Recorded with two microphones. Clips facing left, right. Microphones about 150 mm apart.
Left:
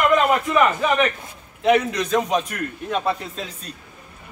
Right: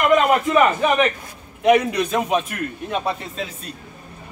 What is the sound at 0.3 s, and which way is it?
A man's voice, 10° right (ahead or behind).